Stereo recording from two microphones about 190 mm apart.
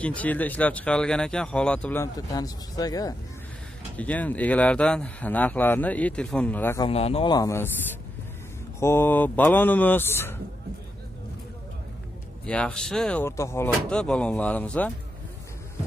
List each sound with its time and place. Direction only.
0.0 s speech: 10° left (ahead or behind)
3.9 s speech: 10° left (ahead or behind)
6.9 s speech: 30° left (ahead or behind); by 7.7 s 15° left (ahead or behind)
8.7 s speech: 15° left (ahead or behind)
12.4 s speech: 5° left (ahead or behind)